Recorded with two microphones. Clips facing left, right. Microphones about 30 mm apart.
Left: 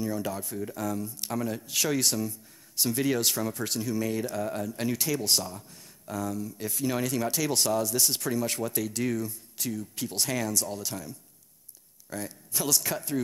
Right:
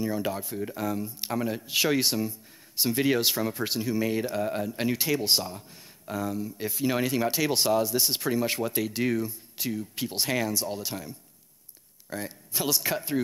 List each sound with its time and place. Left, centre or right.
0.0 s speech: right